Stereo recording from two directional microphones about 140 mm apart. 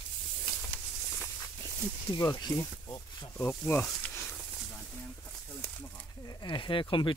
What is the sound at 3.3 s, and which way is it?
Speech, 10° left (ahead or behind).